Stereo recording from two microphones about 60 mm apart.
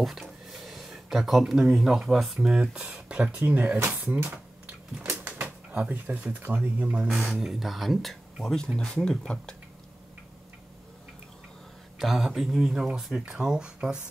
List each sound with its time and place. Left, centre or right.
0.0 s speech: centre
2.8 s speech: right
3.9 s a sound: right
5.2 s speech: right
7.2 s speech: centre
8.7 s speech: centre
12.0 s speech: centre